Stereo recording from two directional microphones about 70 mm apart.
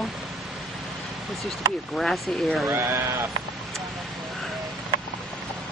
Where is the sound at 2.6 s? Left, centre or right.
Right.